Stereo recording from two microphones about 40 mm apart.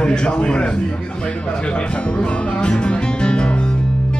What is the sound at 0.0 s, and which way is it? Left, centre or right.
Music, left.